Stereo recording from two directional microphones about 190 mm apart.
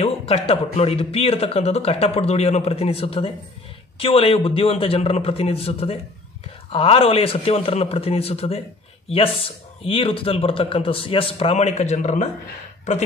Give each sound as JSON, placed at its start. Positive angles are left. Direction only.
{"t": 0.0, "sound": "speech", "side_deg": 30}
{"t": 9.8, "sound": "speech", "side_deg": 30}